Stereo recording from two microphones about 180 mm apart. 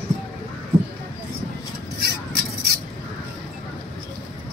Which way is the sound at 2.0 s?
60° right (ahead or behind).